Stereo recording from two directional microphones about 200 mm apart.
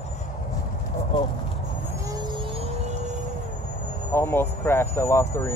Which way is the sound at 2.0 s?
20° right (ahead or behind).